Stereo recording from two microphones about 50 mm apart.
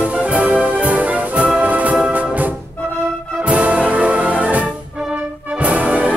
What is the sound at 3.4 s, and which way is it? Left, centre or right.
Music, right.